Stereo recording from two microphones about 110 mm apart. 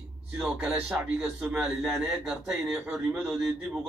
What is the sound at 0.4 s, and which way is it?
A man's voice, 10° right (ahead or behind).